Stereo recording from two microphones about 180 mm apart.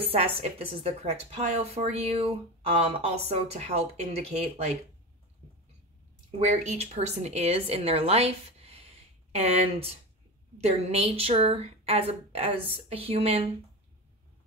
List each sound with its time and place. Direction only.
0.1 s speech: 35° right (ahead or behind)
6.4 s a woman's voice: 40° right (ahead or behind)